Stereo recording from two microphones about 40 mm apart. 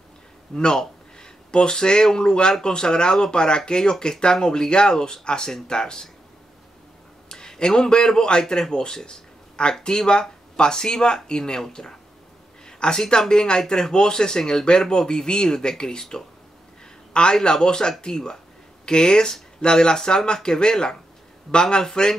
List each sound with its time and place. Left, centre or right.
0.6 s speech: centre
7.2 s a man's voice: centre